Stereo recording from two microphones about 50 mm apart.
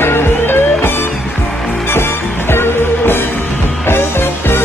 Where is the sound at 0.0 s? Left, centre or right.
Left.